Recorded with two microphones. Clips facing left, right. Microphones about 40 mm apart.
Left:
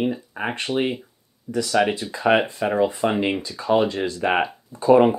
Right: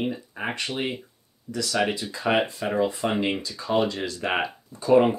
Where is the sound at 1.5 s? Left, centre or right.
Left.